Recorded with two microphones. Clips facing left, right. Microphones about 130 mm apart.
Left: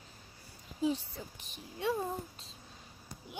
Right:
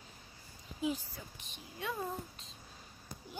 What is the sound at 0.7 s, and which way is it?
Speech, 35° left (ahead or behind).